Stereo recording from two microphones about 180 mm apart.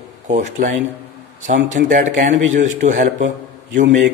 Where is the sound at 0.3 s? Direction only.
45° right (ahead or behind).